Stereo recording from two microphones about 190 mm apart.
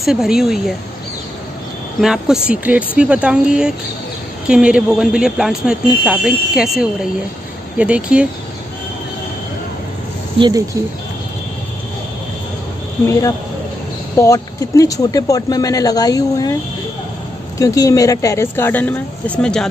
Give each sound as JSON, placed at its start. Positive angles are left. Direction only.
{"t": 0.0, "sound": "speech", "side_deg": 0}
{"t": 2.0, "sound": "speech", "side_deg": -5}
{"t": 14.1, "sound": "speech", "side_deg": 15}
{"t": 17.6, "sound": "speech", "side_deg": 15}